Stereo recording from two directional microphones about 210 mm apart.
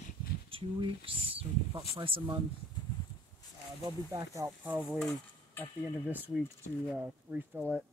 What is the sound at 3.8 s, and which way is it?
Speech, 15° right (ahead or behind).